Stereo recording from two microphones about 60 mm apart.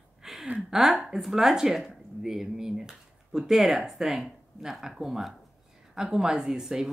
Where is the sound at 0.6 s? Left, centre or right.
Centre.